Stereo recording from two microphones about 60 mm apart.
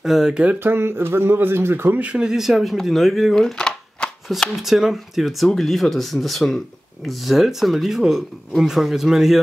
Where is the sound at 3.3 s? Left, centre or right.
Centre.